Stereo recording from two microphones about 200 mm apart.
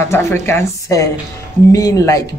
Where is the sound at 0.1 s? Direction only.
15° left (ahead or behind).